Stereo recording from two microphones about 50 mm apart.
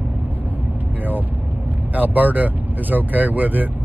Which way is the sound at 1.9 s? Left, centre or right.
Right.